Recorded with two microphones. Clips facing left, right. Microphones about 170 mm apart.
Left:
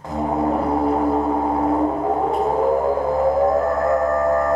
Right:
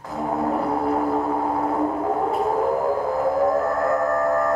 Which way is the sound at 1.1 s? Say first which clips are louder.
Left 3 dB; 20° left (ahead or behind).